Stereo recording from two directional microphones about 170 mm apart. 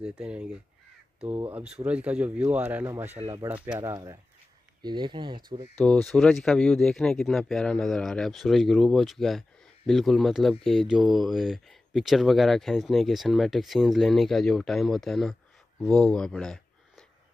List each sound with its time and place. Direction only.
0.0 s speech: 5° right (ahead or behind)
3.9 s speech: 20° right (ahead or behind)
5.8 s speech: 5° left (ahead or behind)